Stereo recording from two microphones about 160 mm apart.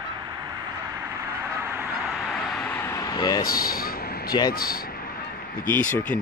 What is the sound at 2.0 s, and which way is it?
Vehicle, centre (ahead or behind).